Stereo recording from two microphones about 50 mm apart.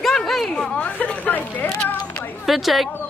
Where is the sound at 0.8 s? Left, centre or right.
Left.